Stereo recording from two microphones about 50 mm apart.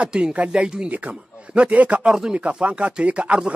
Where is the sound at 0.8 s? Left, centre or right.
Right.